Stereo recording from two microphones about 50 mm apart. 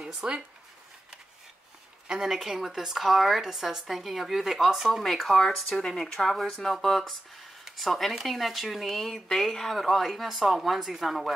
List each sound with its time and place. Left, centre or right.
0.2 s speech: centre
2.0 s speech: centre